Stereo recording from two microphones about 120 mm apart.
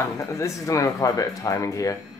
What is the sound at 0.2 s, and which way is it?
Speech, 25° left (ahead or behind).